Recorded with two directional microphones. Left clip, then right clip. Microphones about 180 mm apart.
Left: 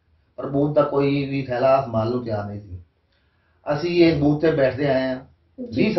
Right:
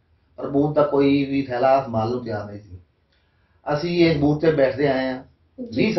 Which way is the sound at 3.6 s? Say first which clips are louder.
Left 1 dB; 15° left (ahead or behind).